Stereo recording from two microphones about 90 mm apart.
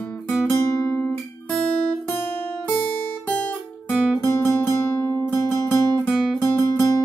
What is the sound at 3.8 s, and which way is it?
Guitar, 10° right (ahead or behind).